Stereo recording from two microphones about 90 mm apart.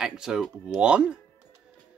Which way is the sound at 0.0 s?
5° right (ahead or behind).